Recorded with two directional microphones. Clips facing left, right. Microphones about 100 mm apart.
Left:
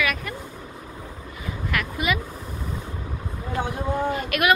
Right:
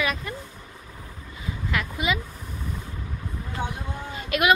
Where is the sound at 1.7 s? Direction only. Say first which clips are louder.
Left 1 dB; 20° right (ahead or behind).